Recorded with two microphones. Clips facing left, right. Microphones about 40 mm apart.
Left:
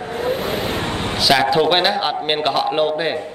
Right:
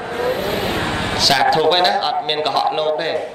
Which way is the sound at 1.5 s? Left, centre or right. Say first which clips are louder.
Right 1 dB; centre.